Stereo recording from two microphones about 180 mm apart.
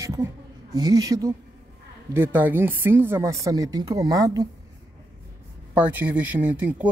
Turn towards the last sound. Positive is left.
turn(degrees=-10)  # may be behind; listen again after turning